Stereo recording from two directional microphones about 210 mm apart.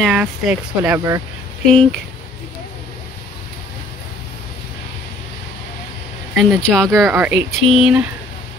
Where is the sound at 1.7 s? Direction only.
5° left (ahead or behind).